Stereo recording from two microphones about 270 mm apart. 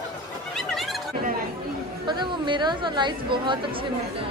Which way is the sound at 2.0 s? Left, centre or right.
Centre.